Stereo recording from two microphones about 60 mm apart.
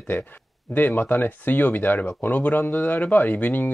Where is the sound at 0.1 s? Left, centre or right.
Left.